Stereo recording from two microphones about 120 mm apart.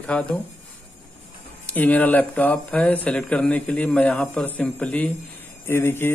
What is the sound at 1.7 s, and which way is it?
Speech, 15° left (ahead or behind).